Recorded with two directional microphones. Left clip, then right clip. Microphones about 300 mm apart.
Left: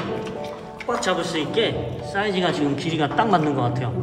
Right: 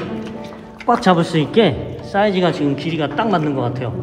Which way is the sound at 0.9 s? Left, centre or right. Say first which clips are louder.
Right 8 dB; centre.